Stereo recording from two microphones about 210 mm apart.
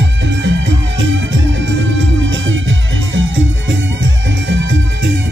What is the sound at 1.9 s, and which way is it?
Music, 65° right (ahead or behind).